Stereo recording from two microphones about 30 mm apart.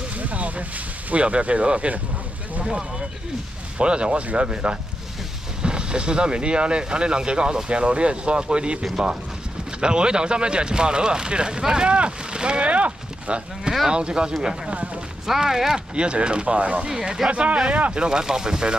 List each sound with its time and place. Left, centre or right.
0.2 s a sound: right
1.1 s speech: right
3.7 s speech: right
12.7 s speech: right
13.8 s speech: right
15.2 s speech: centre
15.9 s speech: right
16.8 s speech: right
17.3 s speech: right
17.9 s speech: right
18.2 s speech: right